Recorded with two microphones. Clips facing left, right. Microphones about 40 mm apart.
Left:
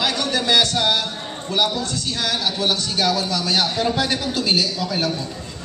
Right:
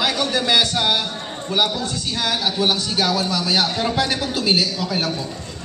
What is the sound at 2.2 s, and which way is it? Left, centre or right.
A man's voice, centre.